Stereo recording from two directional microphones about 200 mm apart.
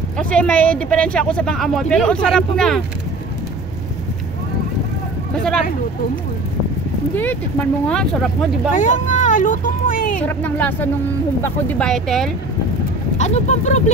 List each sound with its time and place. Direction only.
0.2 s speech: 5° left (ahead or behind)
7.9 s speech: 5° left (ahead or behind)
8.7 s speech: 40° left (ahead or behind)
10.2 s speech: 10° left (ahead or behind)
13.2 s speech: 35° left (ahead or behind)